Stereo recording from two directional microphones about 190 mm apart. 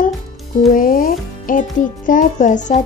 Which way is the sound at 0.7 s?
45° left (ahead or behind).